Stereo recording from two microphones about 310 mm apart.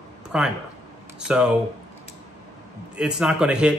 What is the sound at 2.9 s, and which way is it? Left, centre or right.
Speech, centre.